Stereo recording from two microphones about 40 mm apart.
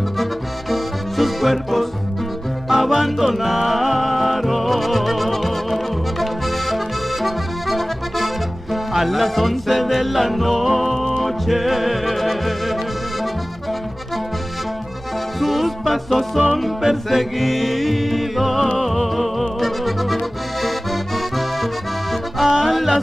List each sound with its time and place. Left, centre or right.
0.2 s music: centre
15.4 s music: centre
20.6 s accordion: centre
22.6 s music: centre